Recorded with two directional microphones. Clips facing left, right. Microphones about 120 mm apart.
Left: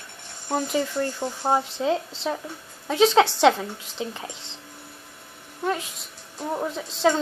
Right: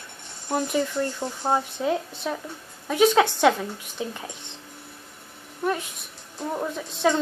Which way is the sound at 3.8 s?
20° left (ahead or behind).